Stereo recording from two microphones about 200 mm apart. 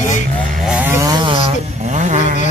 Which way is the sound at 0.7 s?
15° right (ahead or behind).